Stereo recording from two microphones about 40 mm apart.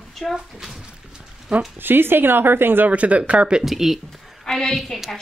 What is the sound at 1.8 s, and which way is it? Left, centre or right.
Speech, right.